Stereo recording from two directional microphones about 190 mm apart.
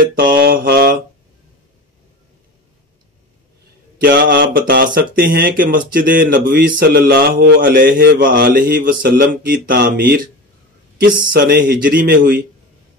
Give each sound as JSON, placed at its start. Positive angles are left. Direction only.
{"t": 0.0, "sound": "mantra", "side_deg": -50}
{"t": 4.0, "sound": "speech", "side_deg": -50}